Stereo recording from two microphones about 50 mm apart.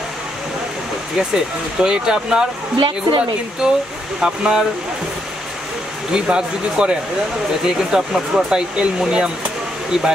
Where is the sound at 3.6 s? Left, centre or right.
Centre.